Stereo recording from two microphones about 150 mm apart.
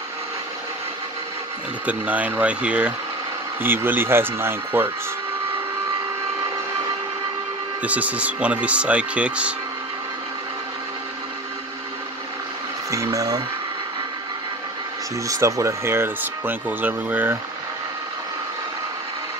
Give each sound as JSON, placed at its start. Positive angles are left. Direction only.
{"t": 1.9, "sound": "speech", "side_deg": -10}
{"t": 7.8, "sound": "speech", "side_deg": -10}
{"t": 12.9, "sound": "speech", "side_deg": -20}
{"t": 15.4, "sound": "speech", "side_deg": -20}